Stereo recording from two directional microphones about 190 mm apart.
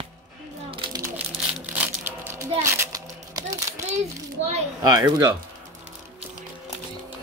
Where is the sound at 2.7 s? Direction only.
15° right (ahead or behind).